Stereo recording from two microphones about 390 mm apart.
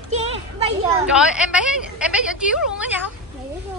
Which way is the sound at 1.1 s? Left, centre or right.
Centre.